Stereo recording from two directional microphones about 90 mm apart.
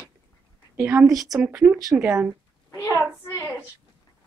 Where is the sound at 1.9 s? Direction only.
25° right (ahead or behind).